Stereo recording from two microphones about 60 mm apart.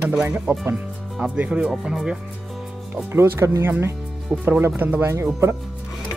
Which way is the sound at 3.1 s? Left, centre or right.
Right.